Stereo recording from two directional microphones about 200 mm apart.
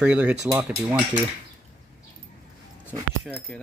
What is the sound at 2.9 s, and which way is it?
Speech, 5° right (ahead or behind).